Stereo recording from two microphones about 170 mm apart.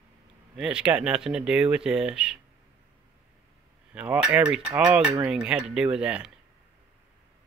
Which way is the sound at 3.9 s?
10° right (ahead or behind).